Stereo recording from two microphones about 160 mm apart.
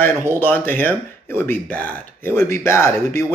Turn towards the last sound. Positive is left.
turn(degrees=15)  # may be behind; listen again after turning